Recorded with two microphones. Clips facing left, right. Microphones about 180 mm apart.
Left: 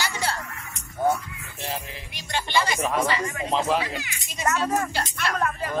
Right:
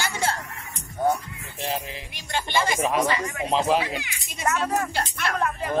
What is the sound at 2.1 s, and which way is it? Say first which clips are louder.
Music: left 1 dB; 50° right (ahead or behind).